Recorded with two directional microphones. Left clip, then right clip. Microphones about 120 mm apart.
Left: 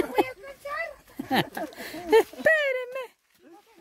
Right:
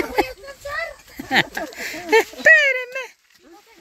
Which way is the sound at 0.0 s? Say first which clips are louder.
Right 4 dB; 20° left (ahead or behind).